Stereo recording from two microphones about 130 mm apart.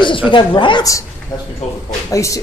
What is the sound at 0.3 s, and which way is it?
Speech, 40° left (ahead or behind).